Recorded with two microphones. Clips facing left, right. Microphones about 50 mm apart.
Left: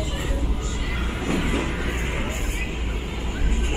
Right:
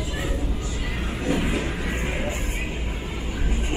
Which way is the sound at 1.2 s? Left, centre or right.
Left.